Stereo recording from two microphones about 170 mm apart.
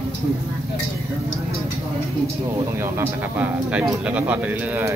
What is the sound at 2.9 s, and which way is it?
Speech, 10° right (ahead or behind).